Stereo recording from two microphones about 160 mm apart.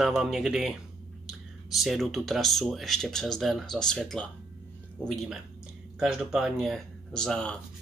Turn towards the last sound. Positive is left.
turn(degrees=5)  # may be behind; listen again after turning